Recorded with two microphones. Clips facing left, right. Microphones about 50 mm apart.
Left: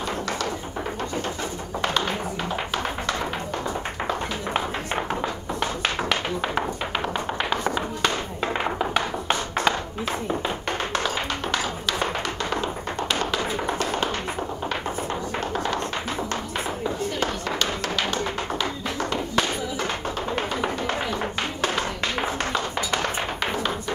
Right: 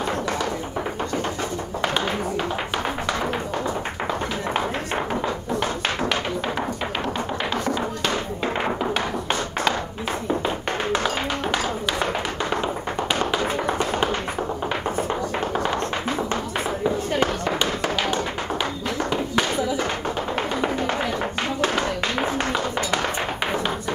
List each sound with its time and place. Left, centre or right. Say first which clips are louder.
7.4 s music: right 2 dB; centre
8.9 s tap: even; centre
13.1 s tap: right 3 dB; centre
17.2 s tap: right 4 dB; centre